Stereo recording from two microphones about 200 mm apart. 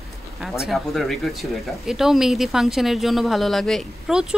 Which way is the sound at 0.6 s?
Centre (ahead or behind).